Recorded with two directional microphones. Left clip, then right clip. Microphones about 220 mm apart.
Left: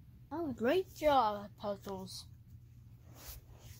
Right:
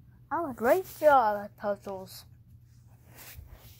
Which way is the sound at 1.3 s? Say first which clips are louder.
Right 8 dB; 15° right (ahead or behind).